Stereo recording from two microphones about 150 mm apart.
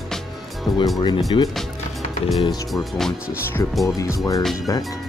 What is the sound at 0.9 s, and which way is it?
Speech, 30° left (ahead or behind).